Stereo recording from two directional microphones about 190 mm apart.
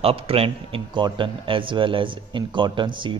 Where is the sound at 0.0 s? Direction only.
30° right (ahead or behind).